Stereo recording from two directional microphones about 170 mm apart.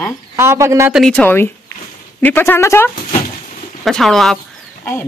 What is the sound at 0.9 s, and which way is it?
Speech, 5° left (ahead or behind).